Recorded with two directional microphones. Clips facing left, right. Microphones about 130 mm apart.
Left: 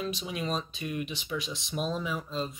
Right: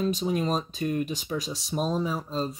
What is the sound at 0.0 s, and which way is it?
Speech, 40° right (ahead or behind).